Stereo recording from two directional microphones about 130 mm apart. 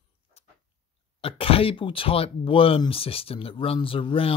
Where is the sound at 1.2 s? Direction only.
45° left (ahead or behind).